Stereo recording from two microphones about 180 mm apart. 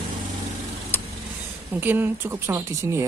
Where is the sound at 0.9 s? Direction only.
10° left (ahead or behind).